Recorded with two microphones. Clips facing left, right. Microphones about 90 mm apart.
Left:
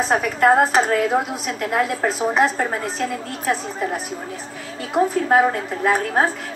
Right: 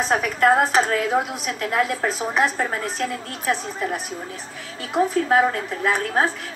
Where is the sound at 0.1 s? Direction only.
20° left (ahead or behind).